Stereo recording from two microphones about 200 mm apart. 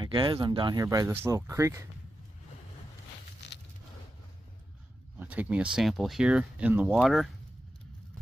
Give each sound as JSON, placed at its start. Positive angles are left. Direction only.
{"t": 0.0, "sound": "speech", "side_deg": -25}
{"t": 3.4, "sound": "a sound", "side_deg": 55}
{"t": 5.2, "sound": "speech", "side_deg": -10}